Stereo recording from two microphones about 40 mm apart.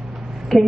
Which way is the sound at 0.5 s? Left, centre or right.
Centre.